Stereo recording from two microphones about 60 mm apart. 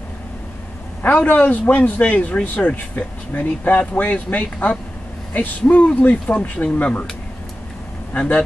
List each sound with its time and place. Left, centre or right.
1.0 s speech: left
8.1 s speech: left